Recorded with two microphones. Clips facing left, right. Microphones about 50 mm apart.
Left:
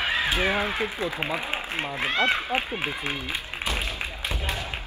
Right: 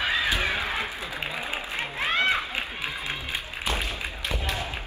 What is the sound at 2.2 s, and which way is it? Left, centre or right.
Speech, left.